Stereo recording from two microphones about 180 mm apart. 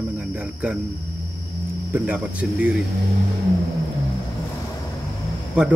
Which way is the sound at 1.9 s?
10° right (ahead or behind).